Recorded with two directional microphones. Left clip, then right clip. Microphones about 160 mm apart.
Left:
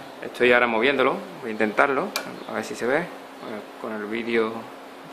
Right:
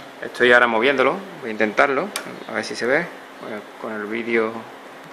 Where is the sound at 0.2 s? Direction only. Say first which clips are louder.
Right 4 dB; 20° right (ahead or behind).